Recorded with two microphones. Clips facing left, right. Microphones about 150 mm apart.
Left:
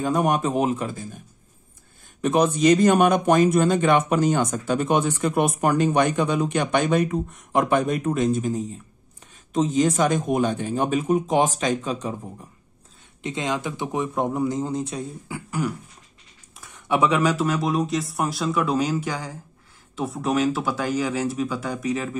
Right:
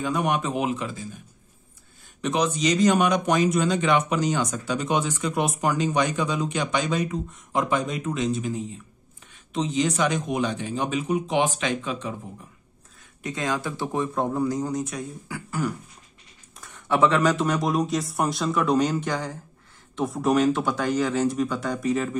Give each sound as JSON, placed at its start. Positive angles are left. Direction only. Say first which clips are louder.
{"t": 0.0, "sound": "speech", "louder": "left 3 dB", "side_deg": 45}
{"t": 2.2, "sound": "speech", "louder": "left 6 dB", "side_deg": 50}
{"t": 13.2, "sound": "speech", "louder": "left 1 dB", "side_deg": 25}